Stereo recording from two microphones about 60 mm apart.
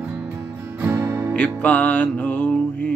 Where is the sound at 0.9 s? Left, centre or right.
Right.